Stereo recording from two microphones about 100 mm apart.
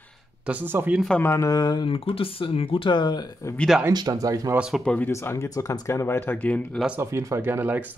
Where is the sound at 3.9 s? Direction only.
35° right (ahead or behind).